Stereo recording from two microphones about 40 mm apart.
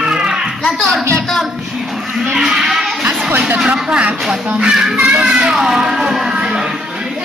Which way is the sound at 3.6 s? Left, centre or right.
Right.